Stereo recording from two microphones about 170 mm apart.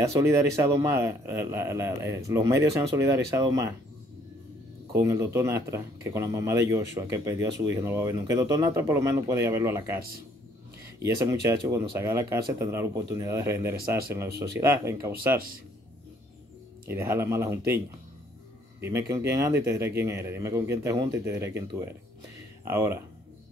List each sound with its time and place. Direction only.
0.0 s a man's voice: 20° right (ahead or behind)
4.9 s a man's voice: 15° right (ahead or behind)
9.9 s speech: 60° right (ahead or behind)
11.0 s a man's voice: 20° right (ahead or behind)
14.3 s speech: 75° right (ahead or behind)
14.6 s a man's voice: 15° right (ahead or behind)
15.1 s speech: 60° right (ahead or behind)
16.8 s a man's voice: 15° right (ahead or behind)